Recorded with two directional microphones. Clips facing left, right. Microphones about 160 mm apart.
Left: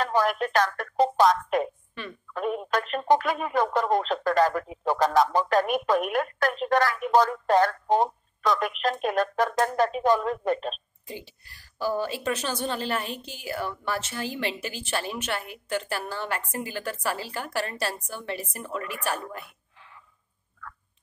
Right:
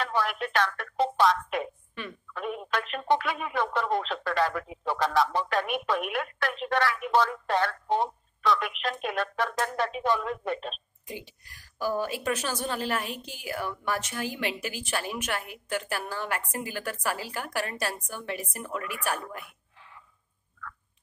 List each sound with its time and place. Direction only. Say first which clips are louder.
0.0 s speech: left 5 dB; 40° left (ahead or behind)
11.4 s a woman's voice: left 2 dB; 10° right (ahead or behind)